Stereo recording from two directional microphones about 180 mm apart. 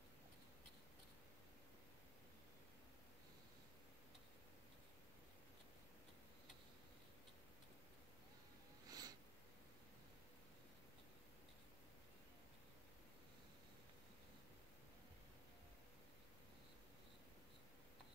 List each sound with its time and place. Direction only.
8.8 s snort: 20° right (ahead or behind)